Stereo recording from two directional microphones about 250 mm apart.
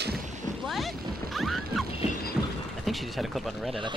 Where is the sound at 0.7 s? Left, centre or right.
Centre.